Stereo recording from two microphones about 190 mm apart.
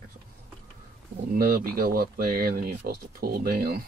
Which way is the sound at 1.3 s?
50° right (ahead or behind).